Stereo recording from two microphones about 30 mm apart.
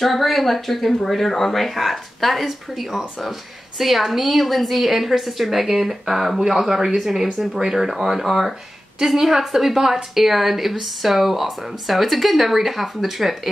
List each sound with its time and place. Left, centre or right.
0.0 s speech: centre